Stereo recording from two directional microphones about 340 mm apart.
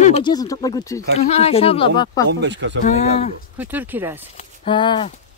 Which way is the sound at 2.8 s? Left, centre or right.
Centre.